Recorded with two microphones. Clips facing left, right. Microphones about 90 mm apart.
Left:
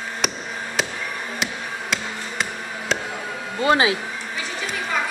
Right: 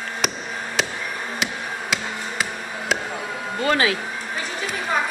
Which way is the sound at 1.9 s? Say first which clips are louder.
Right 1 dB; 10° right (ahead or behind).